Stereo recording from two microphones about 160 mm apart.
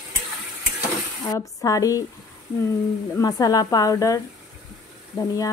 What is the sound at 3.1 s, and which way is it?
A woman's voice, 25° left (ahead or behind).